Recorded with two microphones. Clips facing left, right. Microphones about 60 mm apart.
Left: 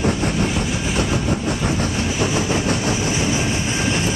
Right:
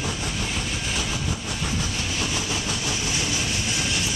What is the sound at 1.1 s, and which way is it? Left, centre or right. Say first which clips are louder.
Vehicle: left 9 dB; left.